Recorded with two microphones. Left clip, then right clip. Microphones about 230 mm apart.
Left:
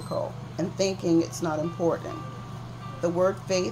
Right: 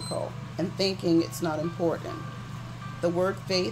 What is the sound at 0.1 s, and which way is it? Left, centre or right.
Speech, centre.